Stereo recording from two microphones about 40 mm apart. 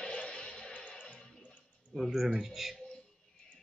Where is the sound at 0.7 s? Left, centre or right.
Left.